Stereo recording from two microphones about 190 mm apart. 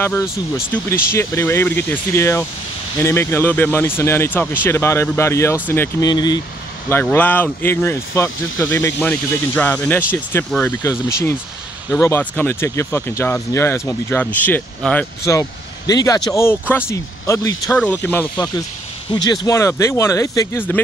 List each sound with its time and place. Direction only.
0.0 s speech: 10° left (ahead or behind)
6.9 s speech: 10° left (ahead or behind)